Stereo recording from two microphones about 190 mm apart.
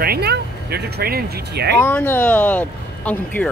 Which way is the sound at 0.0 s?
55° right (ahead or behind).